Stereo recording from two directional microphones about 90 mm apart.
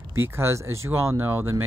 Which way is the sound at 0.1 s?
30° right (ahead or behind).